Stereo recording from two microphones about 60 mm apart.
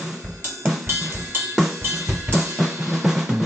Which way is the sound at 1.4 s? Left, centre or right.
Centre.